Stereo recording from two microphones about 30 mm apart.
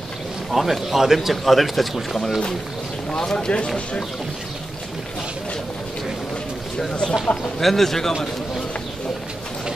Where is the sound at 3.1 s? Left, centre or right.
Left.